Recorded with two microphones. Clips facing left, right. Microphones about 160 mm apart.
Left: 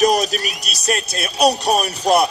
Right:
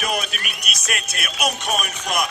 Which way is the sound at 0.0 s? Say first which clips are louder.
Left 10 dB; 35° left (ahead or behind).